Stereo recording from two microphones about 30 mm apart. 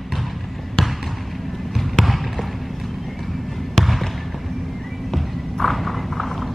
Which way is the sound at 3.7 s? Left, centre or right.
Centre.